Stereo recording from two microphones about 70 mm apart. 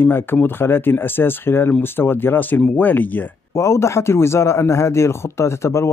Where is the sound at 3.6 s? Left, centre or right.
Left.